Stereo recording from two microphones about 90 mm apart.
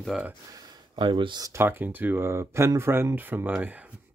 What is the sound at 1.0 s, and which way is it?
Speech, 65° right (ahead or behind).